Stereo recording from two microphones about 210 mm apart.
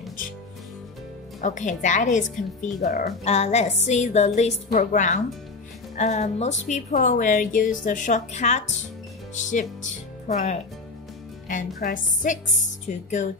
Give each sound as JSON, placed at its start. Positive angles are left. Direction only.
{"t": 1.4, "sound": "a woman's voice", "side_deg": 35}